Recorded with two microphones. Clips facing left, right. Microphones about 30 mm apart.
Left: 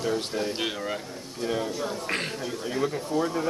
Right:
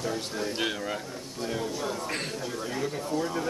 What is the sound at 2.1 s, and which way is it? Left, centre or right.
A man's voice, left.